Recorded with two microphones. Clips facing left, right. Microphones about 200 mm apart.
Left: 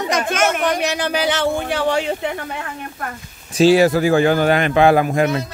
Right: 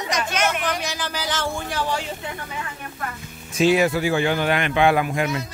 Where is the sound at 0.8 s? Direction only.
65° left (ahead or behind).